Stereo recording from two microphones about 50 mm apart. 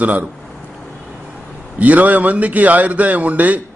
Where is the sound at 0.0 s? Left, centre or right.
Right.